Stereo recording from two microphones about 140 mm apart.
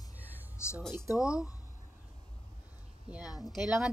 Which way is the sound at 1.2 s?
5° right (ahead or behind).